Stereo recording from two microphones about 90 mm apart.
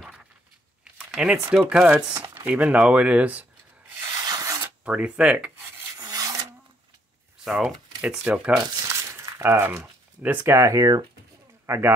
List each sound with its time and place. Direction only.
0.9 s crumpling: 10° right (ahead or behind)
1.5 s speech: 10° right (ahead or behind)
4.2 s a sound: 45° right (ahead or behind)
4.8 s speech: 10° right (ahead or behind)
5.9 s filing: 45° right (ahead or behind)
7.6 s speech: 10° right (ahead or behind)
8.7 s speech: 35° right (ahead or behind)